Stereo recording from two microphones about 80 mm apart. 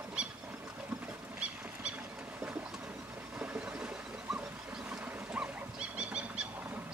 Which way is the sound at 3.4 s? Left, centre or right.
Centre.